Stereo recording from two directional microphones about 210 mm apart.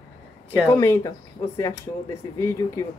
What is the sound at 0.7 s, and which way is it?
Speech, 15° left (ahead or behind).